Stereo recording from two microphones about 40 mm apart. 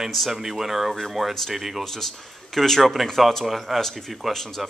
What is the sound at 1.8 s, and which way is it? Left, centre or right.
Speech, centre.